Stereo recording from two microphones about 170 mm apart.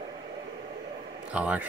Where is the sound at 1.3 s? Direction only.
10° right (ahead or behind).